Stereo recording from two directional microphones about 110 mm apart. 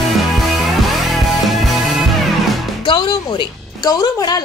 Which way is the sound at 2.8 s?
45° left (ahead or behind).